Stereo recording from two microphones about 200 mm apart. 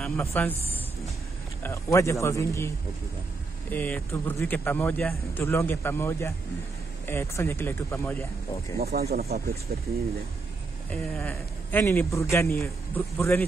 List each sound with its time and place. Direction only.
0.0 s music: 10° left (ahead or behind)
1.6 s a man's voice: 15° left (ahead or behind)
3.7 s a man's voice: 10° left (ahead or behind)
8.7 s speech: 50° right (ahead or behind)
10.9 s a man's voice: 5° left (ahead or behind)